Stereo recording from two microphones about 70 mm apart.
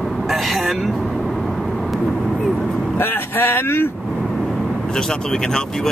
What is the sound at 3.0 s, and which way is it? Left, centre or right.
Speech, left.